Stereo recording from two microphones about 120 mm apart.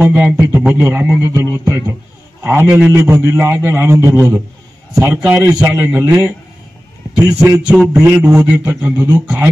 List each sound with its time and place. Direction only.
0.0 s a man's voice: 15° right (ahead or behind)
5.4 s a man's voice: 25° right (ahead or behind)